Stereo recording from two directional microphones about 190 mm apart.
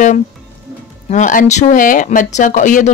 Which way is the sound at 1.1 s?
40° left (ahead or behind).